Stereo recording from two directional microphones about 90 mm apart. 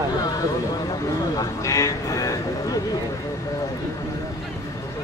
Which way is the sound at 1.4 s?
35° left (ahead or behind).